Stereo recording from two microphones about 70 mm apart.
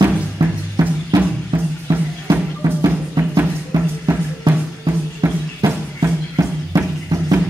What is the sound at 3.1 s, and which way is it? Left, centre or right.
Music, right.